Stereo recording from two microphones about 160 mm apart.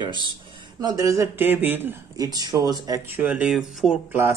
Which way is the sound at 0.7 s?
25° right (ahead or behind).